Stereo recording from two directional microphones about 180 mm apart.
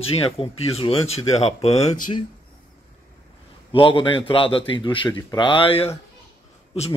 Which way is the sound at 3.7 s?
30° left (ahead or behind).